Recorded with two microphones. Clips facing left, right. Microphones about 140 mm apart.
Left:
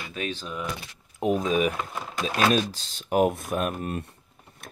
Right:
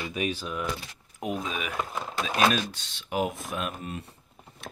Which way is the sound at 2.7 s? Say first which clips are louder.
Left 6 dB; 40° left (ahead or behind).